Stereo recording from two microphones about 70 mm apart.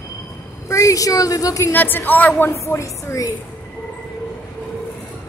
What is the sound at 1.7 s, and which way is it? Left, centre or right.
Speech, left.